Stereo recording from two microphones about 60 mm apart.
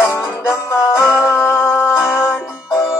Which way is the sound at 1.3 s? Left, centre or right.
Left.